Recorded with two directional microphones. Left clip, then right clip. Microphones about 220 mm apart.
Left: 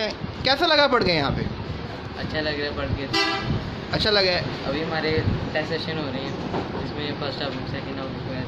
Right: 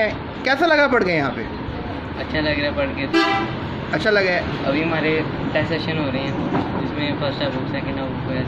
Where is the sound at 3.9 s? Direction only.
15° left (ahead or behind).